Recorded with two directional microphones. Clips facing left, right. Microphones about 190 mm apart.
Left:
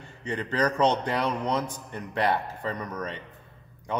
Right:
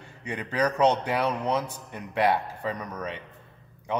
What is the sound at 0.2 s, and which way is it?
A man's voice, 10° right (ahead or behind).